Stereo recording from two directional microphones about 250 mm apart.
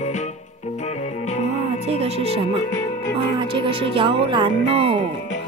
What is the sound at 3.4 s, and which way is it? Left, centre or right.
Speech, right.